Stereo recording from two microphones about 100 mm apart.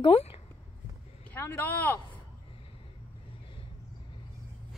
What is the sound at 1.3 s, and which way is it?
Speech, 20° left (ahead or behind).